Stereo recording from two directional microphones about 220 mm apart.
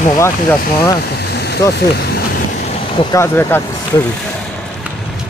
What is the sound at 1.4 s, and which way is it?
Vehicle, 50° left (ahead or behind).